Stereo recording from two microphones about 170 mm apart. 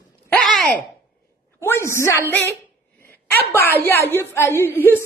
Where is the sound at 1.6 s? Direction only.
15° left (ahead or behind).